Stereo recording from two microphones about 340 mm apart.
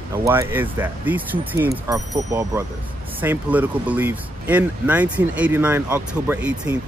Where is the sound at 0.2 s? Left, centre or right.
Centre.